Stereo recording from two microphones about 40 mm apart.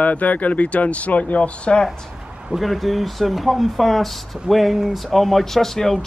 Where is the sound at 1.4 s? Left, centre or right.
Left.